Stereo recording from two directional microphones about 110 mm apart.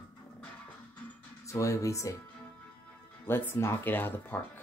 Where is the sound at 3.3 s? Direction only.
20° left (ahead or behind).